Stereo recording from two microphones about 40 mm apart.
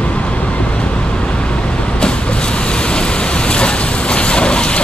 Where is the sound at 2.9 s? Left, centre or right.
Left.